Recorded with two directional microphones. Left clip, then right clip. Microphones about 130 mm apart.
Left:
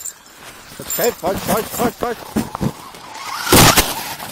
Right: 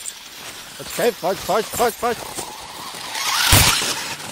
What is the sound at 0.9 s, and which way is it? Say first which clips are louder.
Speech: left 1 dB; 5° left (ahead or behind).